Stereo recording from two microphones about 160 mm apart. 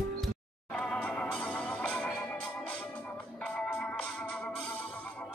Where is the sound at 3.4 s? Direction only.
5° left (ahead or behind).